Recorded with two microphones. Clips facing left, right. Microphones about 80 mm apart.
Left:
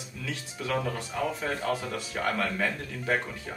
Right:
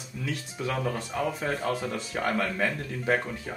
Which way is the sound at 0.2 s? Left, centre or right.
Centre.